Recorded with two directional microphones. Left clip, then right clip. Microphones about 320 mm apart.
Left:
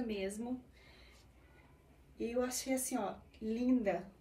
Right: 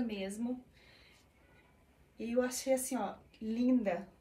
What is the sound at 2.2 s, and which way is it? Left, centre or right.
A woman's voice, centre.